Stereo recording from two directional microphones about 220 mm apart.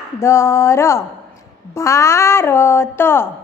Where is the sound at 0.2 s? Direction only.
15° left (ahead or behind).